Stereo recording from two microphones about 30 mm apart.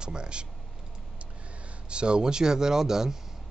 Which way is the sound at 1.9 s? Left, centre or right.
Right.